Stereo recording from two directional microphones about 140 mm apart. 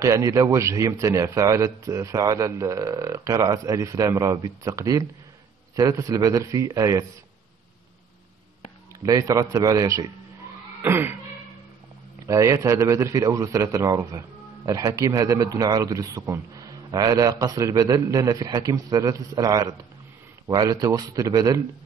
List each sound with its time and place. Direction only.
0.0 s a man's voice: 20° right (ahead or behind)
9.0 s a man's voice: 25° right (ahead or behind)
10.8 s a sound: 15° right (ahead or behind)
12.3 s a man's voice: 20° right (ahead or behind)